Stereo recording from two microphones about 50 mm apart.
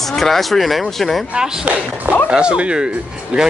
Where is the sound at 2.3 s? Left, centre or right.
Centre.